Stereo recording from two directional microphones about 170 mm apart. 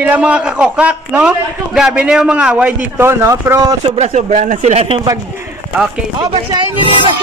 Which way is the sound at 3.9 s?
40° right (ahead or behind).